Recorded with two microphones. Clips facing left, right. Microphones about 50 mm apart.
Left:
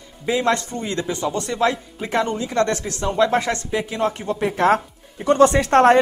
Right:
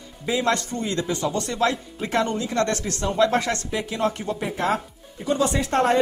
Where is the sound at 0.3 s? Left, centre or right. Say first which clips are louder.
Left 3 dB; left.